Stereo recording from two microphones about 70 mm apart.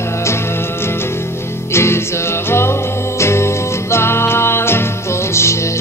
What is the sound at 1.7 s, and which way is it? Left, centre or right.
Music, left.